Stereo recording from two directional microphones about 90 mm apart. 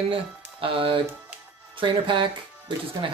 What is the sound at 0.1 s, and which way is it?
Speech, 90° right.